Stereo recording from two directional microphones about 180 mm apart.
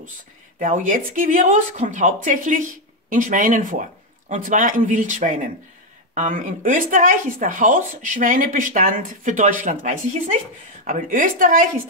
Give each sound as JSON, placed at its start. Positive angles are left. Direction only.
{"t": 0.6, "sound": "speech", "side_deg": -45}